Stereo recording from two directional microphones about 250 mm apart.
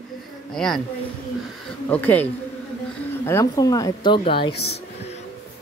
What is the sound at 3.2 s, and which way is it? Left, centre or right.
Speech, centre.